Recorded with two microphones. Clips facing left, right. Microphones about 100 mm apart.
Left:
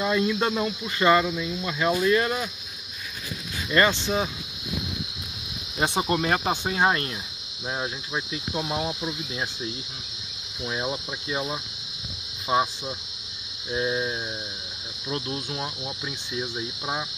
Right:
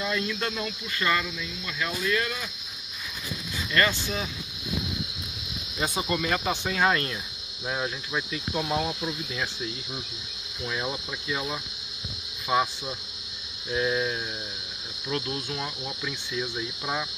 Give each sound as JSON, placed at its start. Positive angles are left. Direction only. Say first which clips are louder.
{"t": 0.0, "sound": "speech", "louder": "left 6 dB", "side_deg": 20}
{"t": 3.7, "sound": "speech", "louder": "left 4 dB", "side_deg": 20}
{"t": 5.8, "sound": "cricket", "louder": "left 4 dB", "side_deg": 40}
{"t": 6.7, "sound": "speech", "louder": "left 1 dB", "side_deg": 30}
{"t": 7.8, "sound": "cricket", "louder": "even", "side_deg": 25}
{"t": 10.7, "sound": "speech", "louder": "left 2 dB", "side_deg": 30}
{"t": 13.7, "sound": "speech", "louder": "even", "side_deg": 25}